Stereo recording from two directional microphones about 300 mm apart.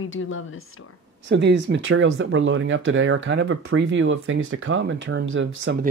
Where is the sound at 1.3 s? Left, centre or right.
Right.